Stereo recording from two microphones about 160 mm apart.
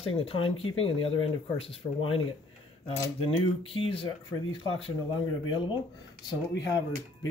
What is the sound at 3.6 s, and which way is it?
Speech, 35° left (ahead or behind).